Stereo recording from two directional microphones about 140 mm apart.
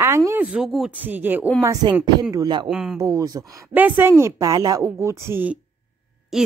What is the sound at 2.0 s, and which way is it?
Speech, 25° right (ahead or behind).